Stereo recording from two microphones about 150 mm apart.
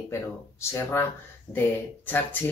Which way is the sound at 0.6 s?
15° left (ahead or behind).